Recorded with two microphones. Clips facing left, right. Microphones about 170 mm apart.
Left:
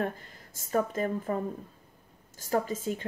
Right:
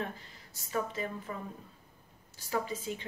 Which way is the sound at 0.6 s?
45° left (ahead or behind).